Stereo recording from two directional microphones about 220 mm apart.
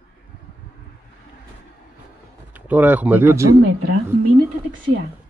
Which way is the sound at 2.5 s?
10° right (ahead or behind).